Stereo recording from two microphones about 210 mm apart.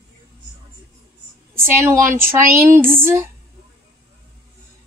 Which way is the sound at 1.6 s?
10° right (ahead or behind).